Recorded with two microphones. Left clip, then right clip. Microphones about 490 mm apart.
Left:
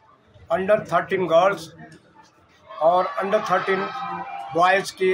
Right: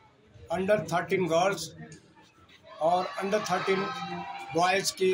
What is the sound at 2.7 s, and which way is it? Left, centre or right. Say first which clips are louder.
Speech: left 8 dB; right.